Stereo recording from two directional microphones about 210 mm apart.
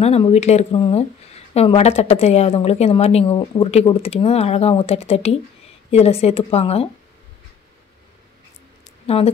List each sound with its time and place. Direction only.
0.0 s speech: 30° left (ahead or behind)
9.0 s speech: 30° left (ahead or behind)